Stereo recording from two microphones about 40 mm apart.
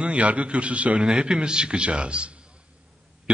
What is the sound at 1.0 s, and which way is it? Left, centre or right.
A man's voice, centre.